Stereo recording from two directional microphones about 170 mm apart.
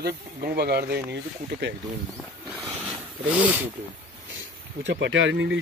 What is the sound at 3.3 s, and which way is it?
Speech, 10° right (ahead or behind).